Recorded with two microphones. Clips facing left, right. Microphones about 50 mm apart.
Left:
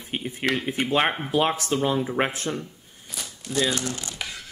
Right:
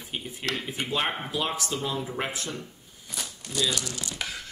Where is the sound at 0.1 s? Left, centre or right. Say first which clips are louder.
Left 6 dB; left.